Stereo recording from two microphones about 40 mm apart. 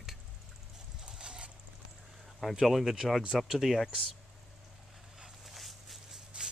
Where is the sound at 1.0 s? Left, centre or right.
Right.